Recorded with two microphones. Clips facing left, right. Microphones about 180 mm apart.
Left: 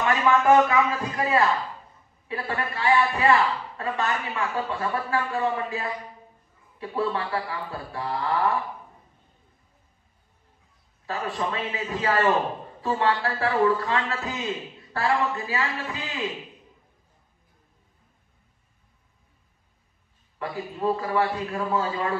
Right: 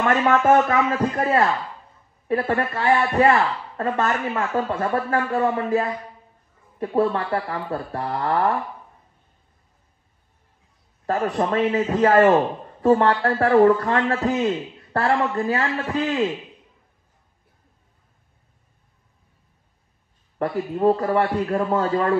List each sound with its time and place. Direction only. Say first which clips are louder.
0.7 s a man's voice: right 3 dB; 50° right (ahead or behind)
11.1 s a man's voice: right 7 dB; 50° right (ahead or behind)
20.3 s a man's voice: right 8 dB; 55° right (ahead or behind)